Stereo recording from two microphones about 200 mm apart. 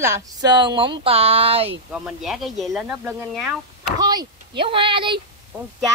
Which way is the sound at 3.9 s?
20° right (ahead or behind).